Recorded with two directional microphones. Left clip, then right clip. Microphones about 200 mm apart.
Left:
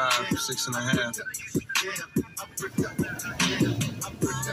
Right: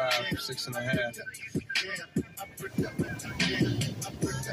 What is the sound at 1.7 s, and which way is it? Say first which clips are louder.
Music: left 3 dB; 60° left (ahead or behind).